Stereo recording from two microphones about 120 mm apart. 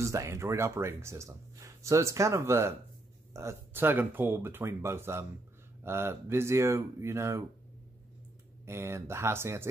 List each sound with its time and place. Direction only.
0.0 s speech: 25° right (ahead or behind)
8.6 s speech: 20° right (ahead or behind)